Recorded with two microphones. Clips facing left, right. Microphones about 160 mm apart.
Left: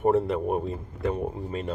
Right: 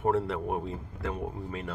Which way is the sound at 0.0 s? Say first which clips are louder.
Left 5 dB; 20° left (ahead or behind).